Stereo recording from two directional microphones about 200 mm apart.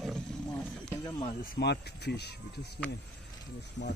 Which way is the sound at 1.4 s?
50° left (ahead or behind).